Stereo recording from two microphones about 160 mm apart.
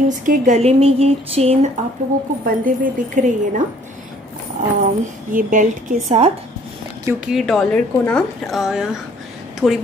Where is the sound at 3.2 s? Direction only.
50° right (ahead or behind).